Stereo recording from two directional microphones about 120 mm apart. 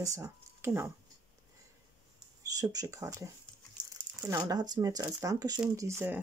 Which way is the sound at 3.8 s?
40° right (ahead or behind).